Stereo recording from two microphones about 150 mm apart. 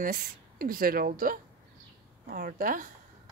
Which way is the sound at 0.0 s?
75° right (ahead or behind).